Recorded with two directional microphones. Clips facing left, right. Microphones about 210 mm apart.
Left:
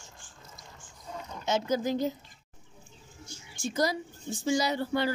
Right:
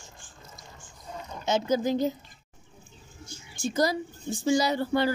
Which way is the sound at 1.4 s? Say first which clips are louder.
Right 3 dB; 20° right (ahead or behind).